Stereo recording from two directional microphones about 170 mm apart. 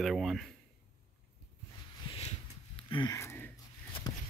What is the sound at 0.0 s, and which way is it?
Speech, centre (ahead or behind).